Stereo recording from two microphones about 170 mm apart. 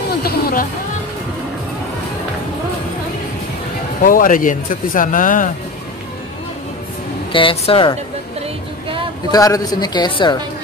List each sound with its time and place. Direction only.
0.2 s speech: 60° left (ahead or behind)
4.0 s speech: 55° left (ahead or behind)
7.3 s speech: 30° left (ahead or behind)
9.3 s a woman's voice: 20° left (ahead or behind)